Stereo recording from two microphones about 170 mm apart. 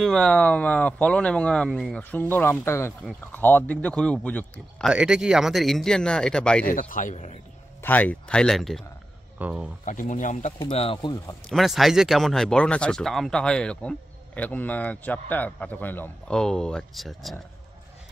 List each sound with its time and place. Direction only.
0.0 s speech: 5° left (ahead or behind)
4.8 s speech: 5° right (ahead or behind)
6.6 s a man's voice: 55° left (ahead or behind)
7.8 s speech: 10° left (ahead or behind); by 9.7 s 5° right (ahead or behind)
9.8 s a man's voice: 50° left (ahead or behind)
10.6 s speech: 30° left (ahead or behind)
11.4 s speech: centre (ahead or behind)